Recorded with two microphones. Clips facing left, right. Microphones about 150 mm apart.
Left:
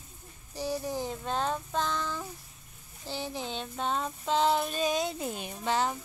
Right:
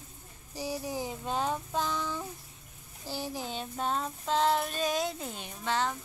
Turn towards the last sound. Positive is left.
turn(degrees=15)  # may be behind; listen again after turning